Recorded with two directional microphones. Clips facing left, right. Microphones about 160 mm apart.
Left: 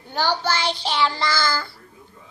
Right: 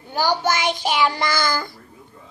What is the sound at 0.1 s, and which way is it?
Child singing, 10° right (ahead or behind).